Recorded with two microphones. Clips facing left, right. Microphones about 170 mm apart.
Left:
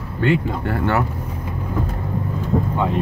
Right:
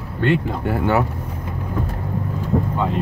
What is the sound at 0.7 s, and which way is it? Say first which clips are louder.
Speech: right 2 dB; 15° right (ahead or behind).